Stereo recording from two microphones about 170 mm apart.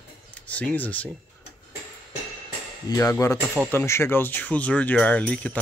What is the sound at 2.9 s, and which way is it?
Speech, 20° left (ahead or behind).